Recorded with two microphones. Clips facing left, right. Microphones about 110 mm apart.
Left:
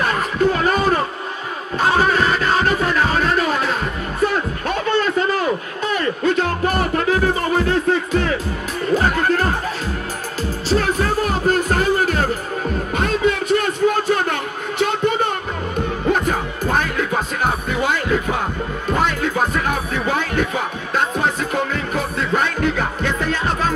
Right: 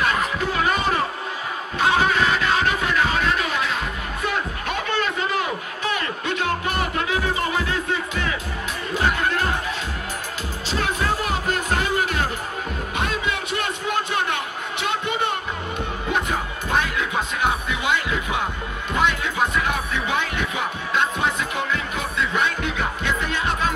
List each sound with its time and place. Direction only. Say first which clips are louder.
0.0 s music: left 5 dB; 40° left (ahead or behind)
4.2 s a sound: left 7 dB; 40° left (ahead or behind)
8.9 s speech: left 5 dB; 40° left (ahead or behind)
10.7 s music: left 5 dB; 40° left (ahead or behind)
12.9 s a sound: left 7 dB; 45° left (ahead or behind)
16.1 s music: left 5 dB; 45° left (ahead or behind)